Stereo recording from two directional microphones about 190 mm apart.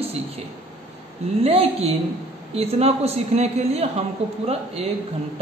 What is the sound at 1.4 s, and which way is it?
A man's voice, 30° right (ahead or behind).